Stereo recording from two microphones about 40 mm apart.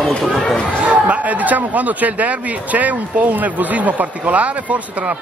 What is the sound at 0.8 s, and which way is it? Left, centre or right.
Speech, right.